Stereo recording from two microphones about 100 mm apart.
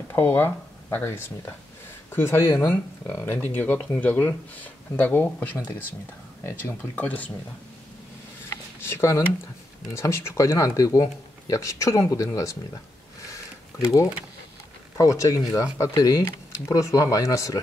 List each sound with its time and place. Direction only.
0.1 s speech: 20° left (ahead or behind)
8.5 s a sound: 25° left (ahead or behind)
9.9 s speech: 30° left (ahead or behind)
15.0 s speech: 30° left (ahead or behind)